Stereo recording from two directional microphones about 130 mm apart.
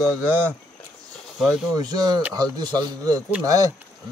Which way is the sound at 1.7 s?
30° right (ahead or behind).